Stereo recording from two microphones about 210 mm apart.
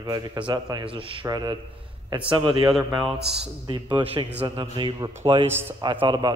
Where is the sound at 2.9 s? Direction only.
Centre (ahead or behind).